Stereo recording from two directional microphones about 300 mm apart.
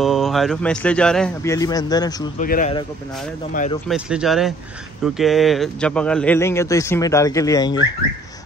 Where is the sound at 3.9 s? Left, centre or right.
Centre.